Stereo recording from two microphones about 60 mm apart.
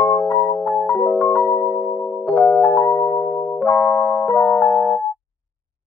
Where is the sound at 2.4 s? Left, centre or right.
Left.